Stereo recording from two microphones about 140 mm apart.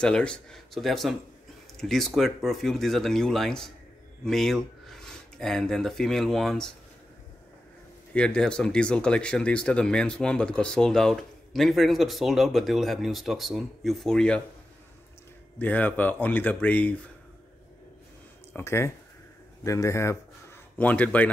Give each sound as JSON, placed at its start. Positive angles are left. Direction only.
{"t": 0.0, "sound": "speech", "side_deg": 5}
{"t": 8.1, "sound": "speech", "side_deg": 5}
{"t": 15.6, "sound": "speech", "side_deg": 10}
{"t": 18.5, "sound": "speech", "side_deg": 20}